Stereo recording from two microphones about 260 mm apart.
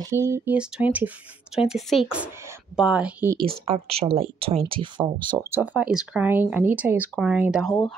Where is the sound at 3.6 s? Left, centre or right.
Right; by 7.7 s centre.